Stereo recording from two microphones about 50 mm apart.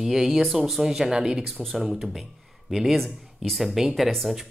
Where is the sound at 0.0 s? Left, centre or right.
Centre.